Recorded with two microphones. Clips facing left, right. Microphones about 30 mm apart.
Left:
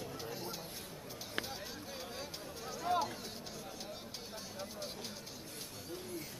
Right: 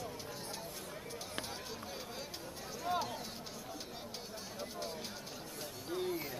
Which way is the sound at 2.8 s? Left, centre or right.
Centre.